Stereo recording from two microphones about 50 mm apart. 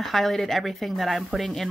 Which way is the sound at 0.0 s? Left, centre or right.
Centre.